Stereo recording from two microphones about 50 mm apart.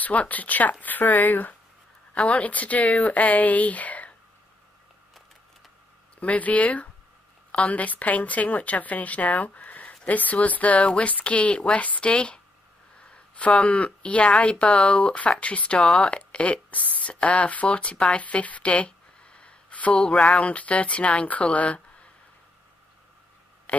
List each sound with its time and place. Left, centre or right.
0.0 s speech: left
6.1 s speech: left
13.0 s a sound: left
13.6 s speech: left
15.9 s speech: centre
16.2 s speech: left
23.7 s speech: left